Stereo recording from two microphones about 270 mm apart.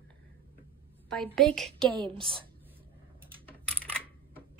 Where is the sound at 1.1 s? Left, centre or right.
Centre.